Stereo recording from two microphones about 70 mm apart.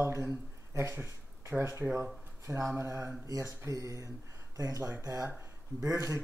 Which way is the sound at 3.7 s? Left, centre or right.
Right.